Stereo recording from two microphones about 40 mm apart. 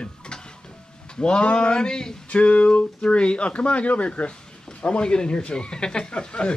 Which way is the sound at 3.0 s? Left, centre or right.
Left.